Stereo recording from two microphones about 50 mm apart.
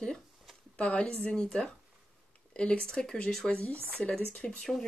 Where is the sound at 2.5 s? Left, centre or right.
Left.